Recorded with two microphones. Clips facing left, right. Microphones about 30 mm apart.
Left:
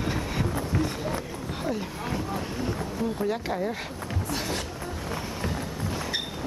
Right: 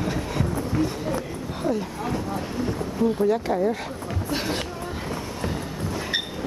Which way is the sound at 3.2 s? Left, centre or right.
Centre.